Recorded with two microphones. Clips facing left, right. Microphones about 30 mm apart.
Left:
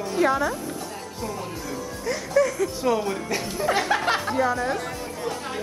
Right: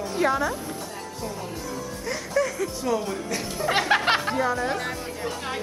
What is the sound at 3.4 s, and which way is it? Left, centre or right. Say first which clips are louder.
Speech: even; centre.